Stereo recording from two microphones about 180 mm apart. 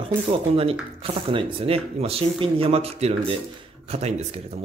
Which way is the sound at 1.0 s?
30° right (ahead or behind).